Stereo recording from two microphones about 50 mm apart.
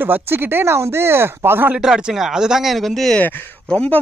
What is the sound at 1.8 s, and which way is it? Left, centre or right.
Speech, centre.